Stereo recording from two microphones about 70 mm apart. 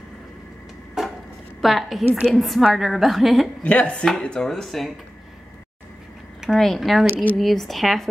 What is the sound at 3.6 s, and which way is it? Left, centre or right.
Speech, centre.